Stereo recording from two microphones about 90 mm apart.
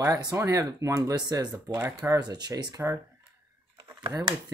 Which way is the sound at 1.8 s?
30° right (ahead or behind).